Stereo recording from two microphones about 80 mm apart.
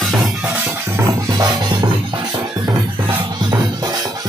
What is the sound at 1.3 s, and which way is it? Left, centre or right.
Music, right.